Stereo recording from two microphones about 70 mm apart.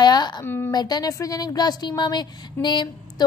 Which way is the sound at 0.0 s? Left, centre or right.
Left.